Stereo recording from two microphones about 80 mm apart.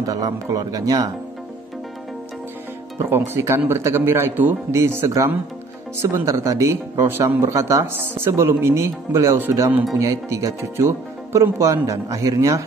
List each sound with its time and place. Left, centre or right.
0.0 s speech: right
3.0 s speech: right
4.7 s speech: right
7.0 s speech: right